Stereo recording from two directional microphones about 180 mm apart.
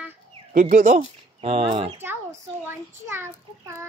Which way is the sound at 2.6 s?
10° right (ahead or behind).